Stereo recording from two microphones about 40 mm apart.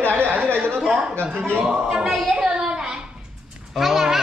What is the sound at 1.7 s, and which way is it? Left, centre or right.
Speech, centre.